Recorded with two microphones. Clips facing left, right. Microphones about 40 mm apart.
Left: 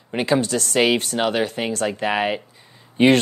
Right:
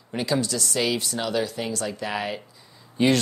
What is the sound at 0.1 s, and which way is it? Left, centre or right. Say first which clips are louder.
Speech: left 5 dB; left.